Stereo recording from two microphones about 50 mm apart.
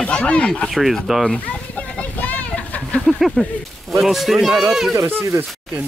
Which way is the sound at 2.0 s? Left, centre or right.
Left.